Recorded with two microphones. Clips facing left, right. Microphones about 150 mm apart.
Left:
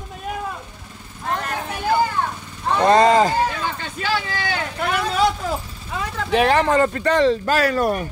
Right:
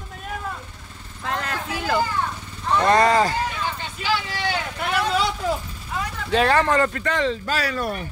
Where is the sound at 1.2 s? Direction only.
90° right.